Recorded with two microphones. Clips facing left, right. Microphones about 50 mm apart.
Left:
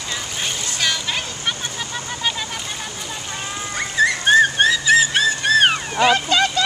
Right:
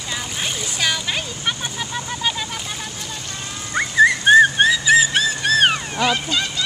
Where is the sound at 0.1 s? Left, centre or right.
Centre.